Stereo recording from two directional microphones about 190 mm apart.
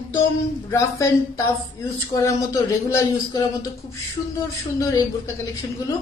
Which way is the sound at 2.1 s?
15° left (ahead or behind).